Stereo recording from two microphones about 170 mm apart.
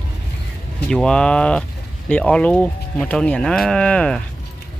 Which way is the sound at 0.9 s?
5° left (ahead or behind).